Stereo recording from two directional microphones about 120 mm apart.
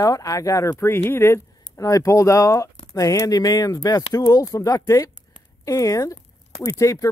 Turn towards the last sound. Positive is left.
turn(degrees=25)  # may be behind; listen again after turning